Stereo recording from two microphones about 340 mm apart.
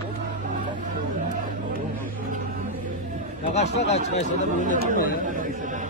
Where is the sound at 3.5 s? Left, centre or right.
Centre.